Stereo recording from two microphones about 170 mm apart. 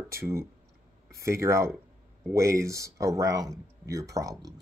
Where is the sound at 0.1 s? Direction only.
15° right (ahead or behind).